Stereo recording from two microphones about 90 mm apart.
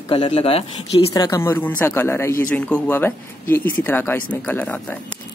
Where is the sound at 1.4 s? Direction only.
25° left (ahead or behind).